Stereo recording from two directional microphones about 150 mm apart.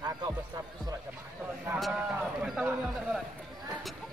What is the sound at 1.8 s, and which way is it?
Speech, 5° right (ahead or behind).